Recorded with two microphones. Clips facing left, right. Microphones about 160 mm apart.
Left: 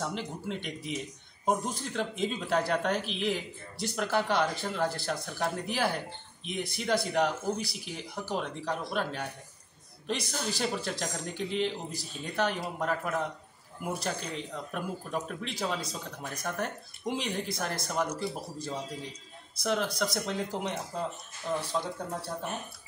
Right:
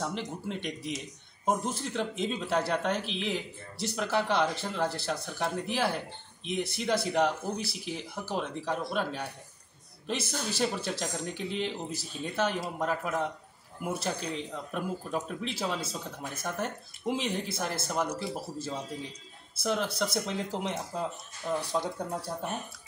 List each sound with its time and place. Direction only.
0.0 s speech: centre (ahead or behind)